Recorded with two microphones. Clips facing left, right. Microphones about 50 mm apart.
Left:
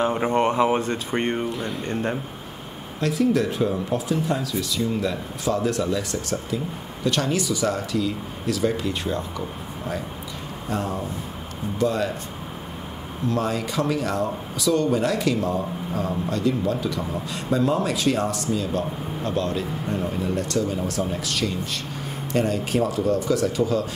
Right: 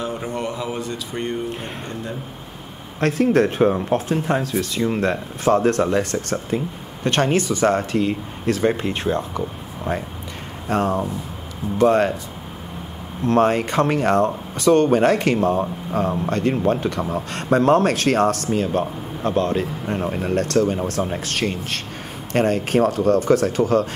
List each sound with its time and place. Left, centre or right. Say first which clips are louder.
0.0 s speech: left 5 dB; left
1.5 s speech: left 2 dB; right
3.0 s speech: right 4 dB; right
13.3 s speech: right 8 dB; right